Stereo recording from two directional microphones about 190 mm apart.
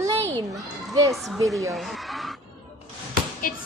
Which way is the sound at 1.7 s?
Centre (ahead or behind).